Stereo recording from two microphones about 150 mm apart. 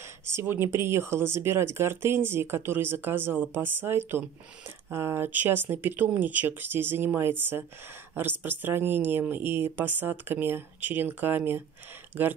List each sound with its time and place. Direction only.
0.3 s speech: 15° right (ahead or behind)